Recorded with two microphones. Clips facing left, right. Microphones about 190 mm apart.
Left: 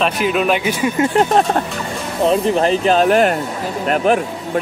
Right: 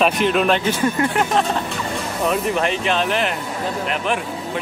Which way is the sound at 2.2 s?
30° left (ahead or behind).